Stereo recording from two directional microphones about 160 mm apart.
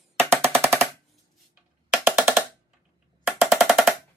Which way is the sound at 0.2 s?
15° right (ahead or behind).